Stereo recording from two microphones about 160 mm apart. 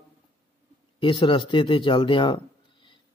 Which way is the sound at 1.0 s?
30° left (ahead or behind).